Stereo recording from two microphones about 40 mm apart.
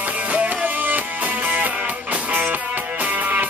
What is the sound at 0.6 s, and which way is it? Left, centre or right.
Music, right.